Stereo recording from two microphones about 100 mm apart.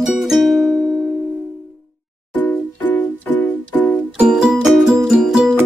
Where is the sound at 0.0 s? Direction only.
Centre (ahead or behind).